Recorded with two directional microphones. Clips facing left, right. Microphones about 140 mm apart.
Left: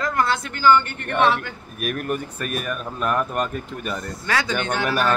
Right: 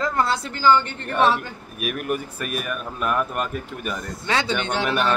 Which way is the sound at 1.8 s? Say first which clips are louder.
Even; 5° right (ahead or behind).